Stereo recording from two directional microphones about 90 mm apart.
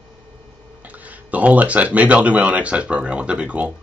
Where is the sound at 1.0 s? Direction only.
15° right (ahead or behind).